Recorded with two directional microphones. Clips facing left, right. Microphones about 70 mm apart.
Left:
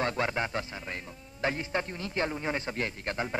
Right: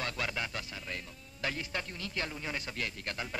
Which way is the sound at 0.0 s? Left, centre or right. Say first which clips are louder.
Left 7 dB; left.